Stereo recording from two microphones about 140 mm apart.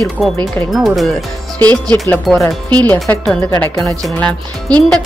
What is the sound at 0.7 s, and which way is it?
Speech, centre (ahead or behind).